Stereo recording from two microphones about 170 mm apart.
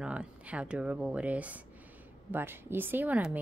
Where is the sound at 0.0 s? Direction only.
5° right (ahead or behind).